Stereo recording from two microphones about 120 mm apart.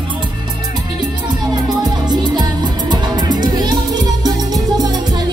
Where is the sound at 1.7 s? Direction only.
35° right (ahead or behind).